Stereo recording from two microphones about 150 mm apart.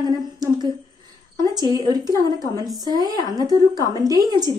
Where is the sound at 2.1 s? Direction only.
25° left (ahead or behind).